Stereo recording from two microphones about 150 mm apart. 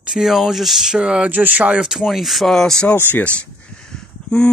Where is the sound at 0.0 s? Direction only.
5° right (ahead or behind).